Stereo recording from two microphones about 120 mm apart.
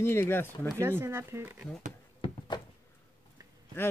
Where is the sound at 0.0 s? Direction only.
20° left (ahead or behind).